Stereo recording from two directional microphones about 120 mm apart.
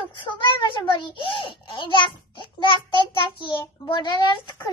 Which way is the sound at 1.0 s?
45° left (ahead or behind).